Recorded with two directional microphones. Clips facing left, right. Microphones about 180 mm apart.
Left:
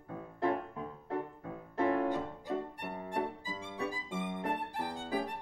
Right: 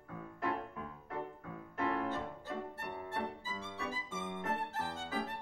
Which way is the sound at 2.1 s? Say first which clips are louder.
Left 5 dB; 15° left (ahead or behind).